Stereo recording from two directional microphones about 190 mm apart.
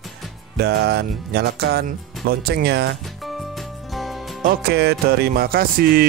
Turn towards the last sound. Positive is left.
turn(degrees=-50)  # may be behind; listen again after turning